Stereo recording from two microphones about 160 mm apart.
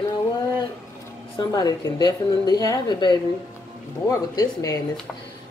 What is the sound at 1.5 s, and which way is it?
A woman's voice, 25° left (ahead or behind).